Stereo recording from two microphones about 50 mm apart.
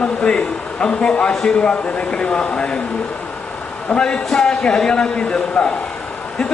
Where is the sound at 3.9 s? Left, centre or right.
Centre.